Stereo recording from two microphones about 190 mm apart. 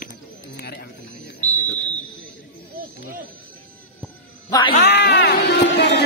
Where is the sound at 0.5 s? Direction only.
55° left (ahead or behind).